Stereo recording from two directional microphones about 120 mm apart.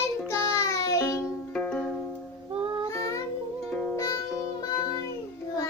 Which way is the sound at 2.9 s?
25° left (ahead or behind).